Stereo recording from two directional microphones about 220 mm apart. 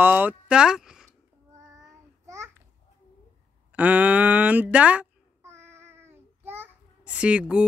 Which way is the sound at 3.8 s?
5° right (ahead or behind).